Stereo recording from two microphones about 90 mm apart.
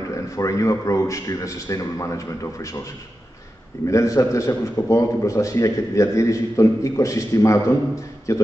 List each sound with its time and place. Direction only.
0.1 s a man's voice: 35° left (ahead or behind)
3.8 s a man's voice: 35° left (ahead or behind)